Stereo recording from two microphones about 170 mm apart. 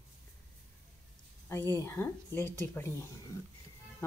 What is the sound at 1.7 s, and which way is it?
A woman's voice, 15° left (ahead or behind).